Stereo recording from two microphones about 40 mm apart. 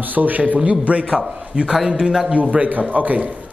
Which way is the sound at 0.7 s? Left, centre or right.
Right.